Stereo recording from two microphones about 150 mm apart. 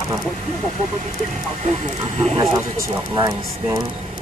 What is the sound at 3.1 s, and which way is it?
Speech, 25° right (ahead or behind).